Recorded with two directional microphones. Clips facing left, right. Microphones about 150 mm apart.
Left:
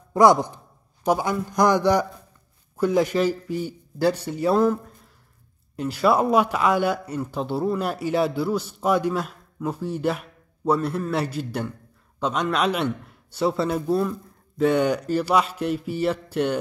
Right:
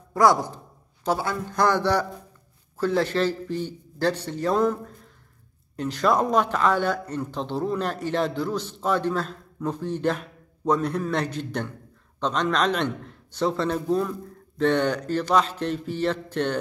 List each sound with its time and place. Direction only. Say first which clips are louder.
0.1 s speech: left 3 dB; 20° left (ahead or behind)